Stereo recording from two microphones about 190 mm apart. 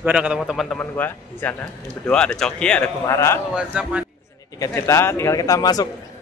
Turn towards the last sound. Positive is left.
turn(degrees=20)  # may be behind; listen again after turning